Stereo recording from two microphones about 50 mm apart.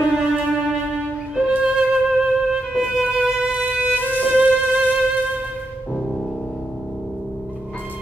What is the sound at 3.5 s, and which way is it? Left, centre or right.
Violin, right.